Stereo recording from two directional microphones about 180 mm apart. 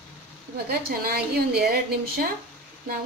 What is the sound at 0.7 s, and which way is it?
Speech, 55° right (ahead or behind).